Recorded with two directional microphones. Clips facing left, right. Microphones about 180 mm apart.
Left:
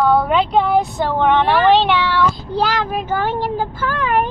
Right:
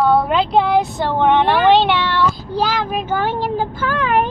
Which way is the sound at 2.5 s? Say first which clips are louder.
Even; 15° right (ahead or behind).